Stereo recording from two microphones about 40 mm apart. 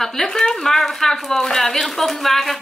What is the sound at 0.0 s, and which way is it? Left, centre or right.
A child's voice, centre.